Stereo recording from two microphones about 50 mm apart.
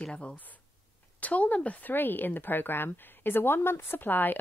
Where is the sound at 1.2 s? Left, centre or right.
Left.